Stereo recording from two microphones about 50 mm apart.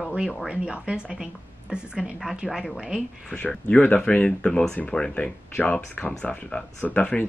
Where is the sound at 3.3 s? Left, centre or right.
Left.